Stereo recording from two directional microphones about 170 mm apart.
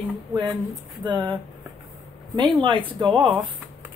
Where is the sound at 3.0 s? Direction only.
25° right (ahead or behind).